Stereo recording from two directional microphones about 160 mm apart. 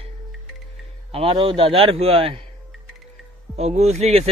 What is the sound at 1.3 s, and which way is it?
Speech, 30° right (ahead or behind).